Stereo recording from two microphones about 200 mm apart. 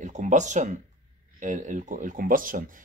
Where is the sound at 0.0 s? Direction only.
40° right (ahead or behind).